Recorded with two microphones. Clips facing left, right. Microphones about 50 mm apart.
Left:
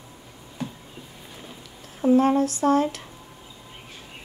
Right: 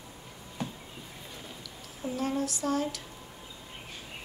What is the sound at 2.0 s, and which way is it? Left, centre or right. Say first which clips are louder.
Speech: left 13 dB; left.